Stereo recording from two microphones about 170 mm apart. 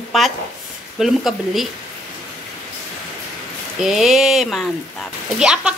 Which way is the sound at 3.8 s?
Centre (ahead or behind).